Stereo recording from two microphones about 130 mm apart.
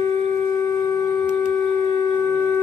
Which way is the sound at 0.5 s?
25° left (ahead or behind).